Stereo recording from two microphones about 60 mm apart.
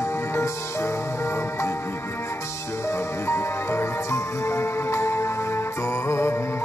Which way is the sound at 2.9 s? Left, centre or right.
Left.